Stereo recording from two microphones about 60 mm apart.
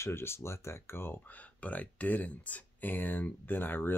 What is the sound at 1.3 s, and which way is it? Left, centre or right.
Speech, left.